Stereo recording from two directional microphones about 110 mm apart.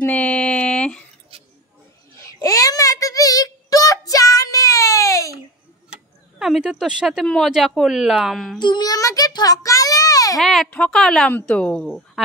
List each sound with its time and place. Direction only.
0.0 s a sound: 10° left (ahead or behind)
2.1 s child singing: 30° left (ahead or behind)
5.9 s tick-tock: 5° right (ahead or behind)
7.2 s a woman's voice: centre (ahead or behind)
8.5 s a child's voice: 40° left (ahead or behind)
10.3 s a woman's voice: centre (ahead or behind)